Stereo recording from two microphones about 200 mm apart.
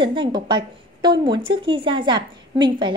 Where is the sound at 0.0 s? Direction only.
25° right (ahead or behind).